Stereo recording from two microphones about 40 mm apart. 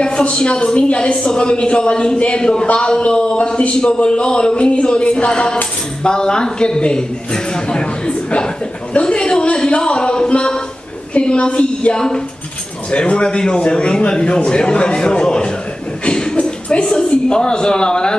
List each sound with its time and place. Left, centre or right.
0.0 s speech: left
3.8 s speech: left
9.0 s a sound: left
11.1 s speech: left
16.1 s a sound: centre
16.3 s a man's voice: left